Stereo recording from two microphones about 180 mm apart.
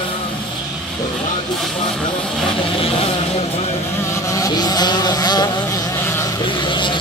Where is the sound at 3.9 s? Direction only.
15° left (ahead or behind).